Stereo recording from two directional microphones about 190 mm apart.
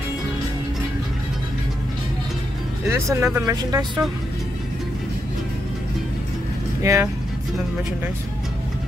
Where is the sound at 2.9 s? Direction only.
15° right (ahead or behind).